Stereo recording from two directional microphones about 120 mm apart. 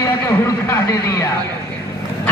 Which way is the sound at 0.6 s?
20° left (ahead or behind).